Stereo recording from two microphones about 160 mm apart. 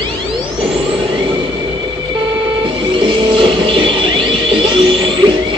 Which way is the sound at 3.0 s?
30° right (ahead or behind).